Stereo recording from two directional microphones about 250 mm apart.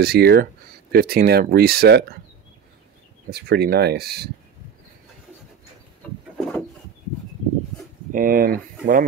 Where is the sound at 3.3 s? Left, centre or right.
Right.